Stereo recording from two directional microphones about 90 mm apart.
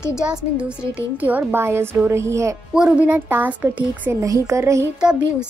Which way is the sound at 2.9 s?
20° right (ahead or behind).